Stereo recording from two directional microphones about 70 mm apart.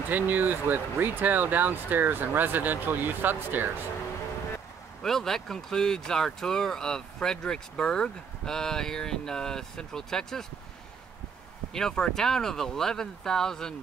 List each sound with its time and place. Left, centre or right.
0.1 s speech: right
5.0 s speech: centre
11.7 s speech: centre